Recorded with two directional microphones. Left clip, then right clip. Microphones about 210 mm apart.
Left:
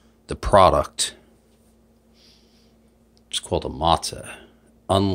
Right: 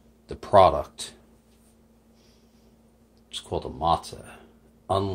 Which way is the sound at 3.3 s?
45° left (ahead or behind).